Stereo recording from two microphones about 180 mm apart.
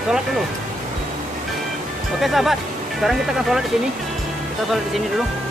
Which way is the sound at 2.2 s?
Centre (ahead or behind).